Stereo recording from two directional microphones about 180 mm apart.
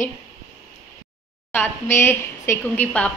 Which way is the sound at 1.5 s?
15° left (ahead or behind).